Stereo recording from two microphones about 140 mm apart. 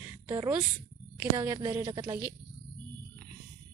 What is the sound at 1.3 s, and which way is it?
Speech, 25° right (ahead or behind).